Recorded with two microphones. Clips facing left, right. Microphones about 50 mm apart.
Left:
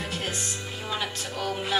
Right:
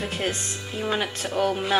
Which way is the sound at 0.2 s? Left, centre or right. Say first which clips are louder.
Right 4 dB; right.